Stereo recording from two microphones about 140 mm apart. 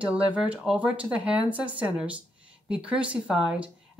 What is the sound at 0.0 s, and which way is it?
Speech, 10° right (ahead or behind).